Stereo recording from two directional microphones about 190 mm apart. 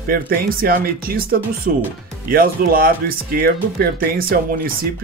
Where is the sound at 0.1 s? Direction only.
50° right (ahead or behind).